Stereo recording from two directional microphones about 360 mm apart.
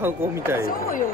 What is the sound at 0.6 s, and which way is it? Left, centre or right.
Speech, left.